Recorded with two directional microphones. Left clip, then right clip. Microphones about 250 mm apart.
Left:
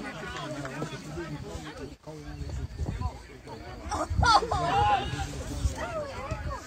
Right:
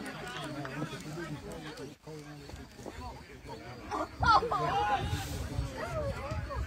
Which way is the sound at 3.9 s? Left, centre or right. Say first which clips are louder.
Left 3 dB; left.